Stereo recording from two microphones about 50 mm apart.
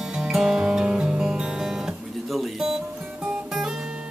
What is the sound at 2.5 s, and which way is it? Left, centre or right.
Music, centre.